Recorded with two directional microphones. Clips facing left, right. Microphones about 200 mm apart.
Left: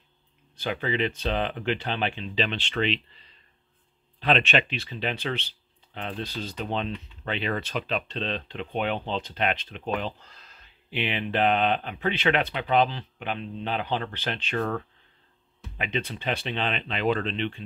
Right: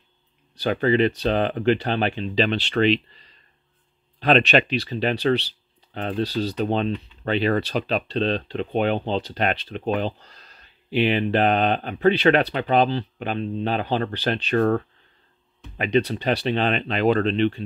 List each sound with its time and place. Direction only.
0.6 s speech: 45° right (ahead or behind)
15.8 s speech: 40° right (ahead or behind)